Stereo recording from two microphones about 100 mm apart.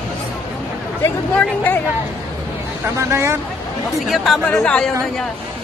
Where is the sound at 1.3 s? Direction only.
15° left (ahead or behind).